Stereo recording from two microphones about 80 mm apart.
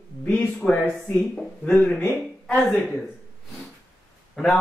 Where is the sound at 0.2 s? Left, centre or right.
Centre.